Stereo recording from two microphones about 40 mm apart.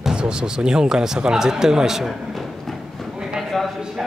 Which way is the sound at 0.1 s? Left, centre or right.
Right.